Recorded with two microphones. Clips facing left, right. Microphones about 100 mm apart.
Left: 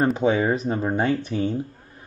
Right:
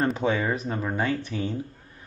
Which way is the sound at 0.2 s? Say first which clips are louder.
Left 5 dB; 25° left (ahead or behind).